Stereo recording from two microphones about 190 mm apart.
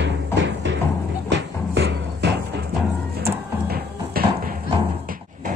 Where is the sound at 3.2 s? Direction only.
55° right (ahead or behind).